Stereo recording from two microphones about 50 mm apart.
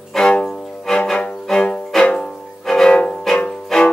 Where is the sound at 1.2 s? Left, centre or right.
Centre.